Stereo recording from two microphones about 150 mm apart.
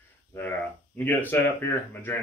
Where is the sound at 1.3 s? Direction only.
15° left (ahead or behind).